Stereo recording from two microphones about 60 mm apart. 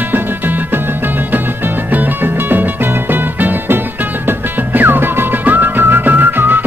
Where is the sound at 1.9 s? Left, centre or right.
Right.